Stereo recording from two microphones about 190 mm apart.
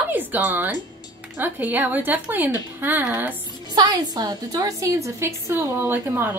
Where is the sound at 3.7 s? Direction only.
20° right (ahead or behind).